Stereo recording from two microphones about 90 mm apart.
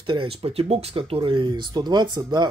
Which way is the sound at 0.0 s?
75° right (ahead or behind).